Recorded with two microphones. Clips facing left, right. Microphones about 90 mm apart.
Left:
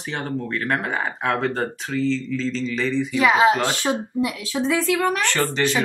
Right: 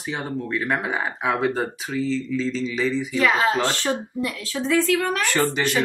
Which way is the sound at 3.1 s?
15° left (ahead or behind).